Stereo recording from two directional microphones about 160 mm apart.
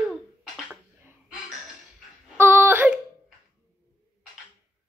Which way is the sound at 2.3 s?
15° right (ahead or behind).